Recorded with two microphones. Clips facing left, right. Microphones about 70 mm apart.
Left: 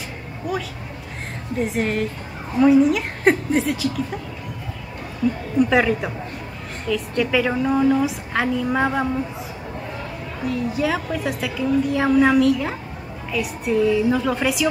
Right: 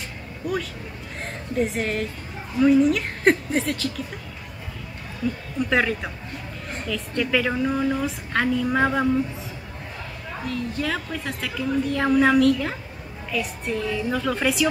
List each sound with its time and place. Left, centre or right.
0.4 s a woman's voice: centre
5.7 s a woman's voice: centre
10.4 s a woman's voice: centre